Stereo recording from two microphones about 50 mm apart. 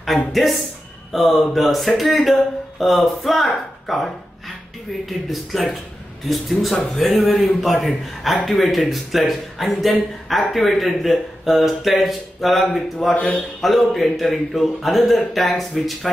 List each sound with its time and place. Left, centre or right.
0.3 s speech: centre
13.2 s a man's voice: centre
13.6 s speech: centre